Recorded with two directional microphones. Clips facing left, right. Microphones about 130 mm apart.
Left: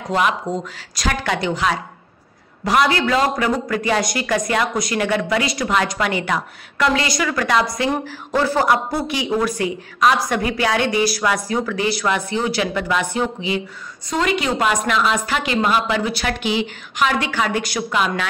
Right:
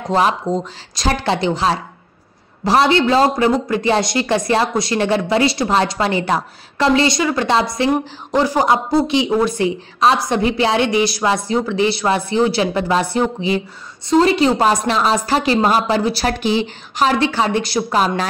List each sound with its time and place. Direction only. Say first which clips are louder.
0.1 s a woman's voice: right 3 dB; 35° right (ahead or behind)